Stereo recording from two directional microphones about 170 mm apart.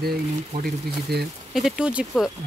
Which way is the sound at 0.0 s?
65° right (ahead or behind).